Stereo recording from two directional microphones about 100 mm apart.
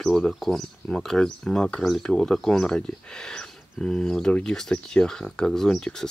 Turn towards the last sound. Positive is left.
turn(degrees=5)  # may be behind; listen again after turning